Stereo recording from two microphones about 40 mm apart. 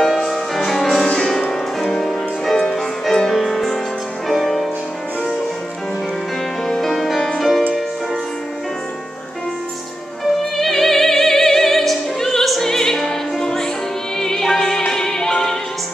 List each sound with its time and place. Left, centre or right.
0.0 s music: centre
3.3 s music: centre
6.8 s music: centre
10.6 s opera: centre
12.6 s music: centre